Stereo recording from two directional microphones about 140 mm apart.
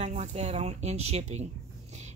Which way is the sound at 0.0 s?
60° right (ahead or behind).